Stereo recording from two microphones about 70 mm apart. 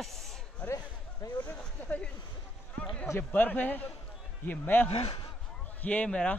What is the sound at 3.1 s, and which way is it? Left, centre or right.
A man's voice, left.